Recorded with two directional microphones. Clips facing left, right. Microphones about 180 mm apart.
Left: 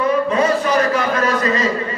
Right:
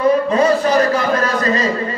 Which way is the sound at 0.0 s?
35° right (ahead or behind).